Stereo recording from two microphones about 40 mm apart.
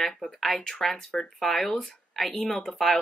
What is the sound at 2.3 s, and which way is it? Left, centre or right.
Speech, centre.